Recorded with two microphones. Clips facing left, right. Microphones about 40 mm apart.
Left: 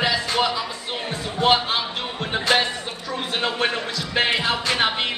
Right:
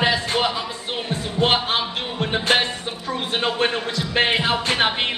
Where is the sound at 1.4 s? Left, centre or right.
Right.